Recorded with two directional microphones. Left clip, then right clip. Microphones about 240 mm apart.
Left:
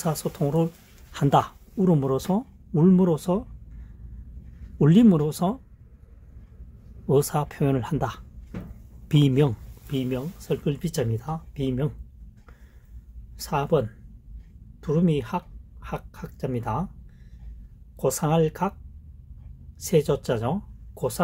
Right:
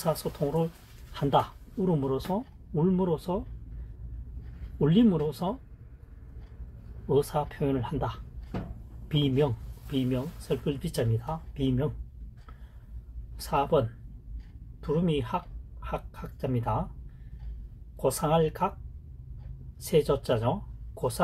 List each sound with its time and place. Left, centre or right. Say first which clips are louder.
0.0 s speech: left 2 dB; left
4.7 s speech: left 5 dB; left
7.1 s speech: left 4 dB; left
13.4 s speech: left 2 dB; left
17.9 s speech: left 2 dB; left
19.8 s speech: left 3 dB; left